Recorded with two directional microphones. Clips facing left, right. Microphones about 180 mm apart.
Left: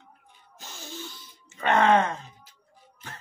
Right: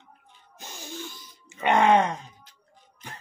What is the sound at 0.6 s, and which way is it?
Gasp, 15° right (ahead or behind).